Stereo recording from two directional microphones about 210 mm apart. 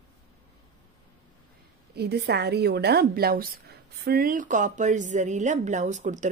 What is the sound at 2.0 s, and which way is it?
A woman's voice, 50° right (ahead or behind).